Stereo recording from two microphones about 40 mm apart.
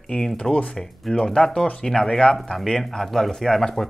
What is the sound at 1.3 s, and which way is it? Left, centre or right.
Speech, centre.